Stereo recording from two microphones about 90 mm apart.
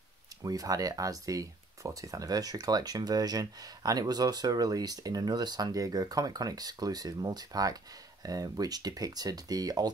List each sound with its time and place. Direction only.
0.4 s speech: 40° right (ahead or behind)